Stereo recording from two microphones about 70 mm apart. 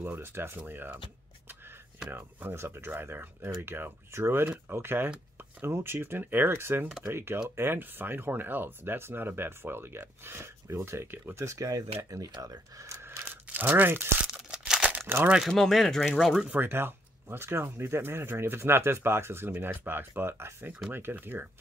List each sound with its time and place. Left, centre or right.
0.0 s speech: right
2.0 s speech: right
11.4 s speech: right
13.3 s a sound: right
14.3 s crumpling: centre
15.5 s speech: centre
16.4 s speech: right